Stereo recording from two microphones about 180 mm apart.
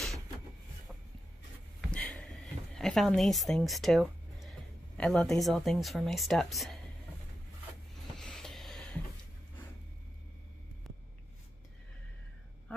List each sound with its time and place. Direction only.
1.9 s a sound: 5° left (ahead or behind)
2.8 s speech: 5° left (ahead or behind)
8.2 s vehicle: centre (ahead or behind)